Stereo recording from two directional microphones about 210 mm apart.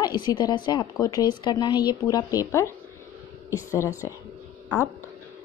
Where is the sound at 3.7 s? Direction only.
15° left (ahead or behind).